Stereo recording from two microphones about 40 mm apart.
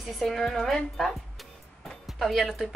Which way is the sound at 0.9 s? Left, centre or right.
Centre.